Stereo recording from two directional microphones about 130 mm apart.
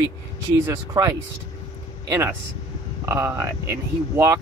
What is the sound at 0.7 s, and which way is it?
Speech, 25° right (ahead or behind).